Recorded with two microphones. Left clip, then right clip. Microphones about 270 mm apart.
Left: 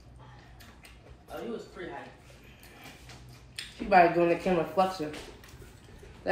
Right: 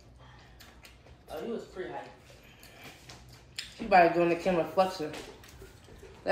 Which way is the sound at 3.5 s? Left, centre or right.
Centre.